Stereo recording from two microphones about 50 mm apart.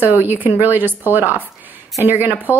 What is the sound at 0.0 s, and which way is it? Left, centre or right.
A woman's voice, right.